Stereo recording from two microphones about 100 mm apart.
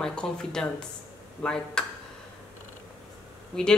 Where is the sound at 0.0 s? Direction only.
10° left (ahead or behind).